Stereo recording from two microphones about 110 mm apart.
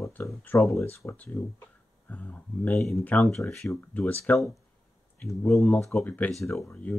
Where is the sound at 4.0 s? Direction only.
15° left (ahead or behind).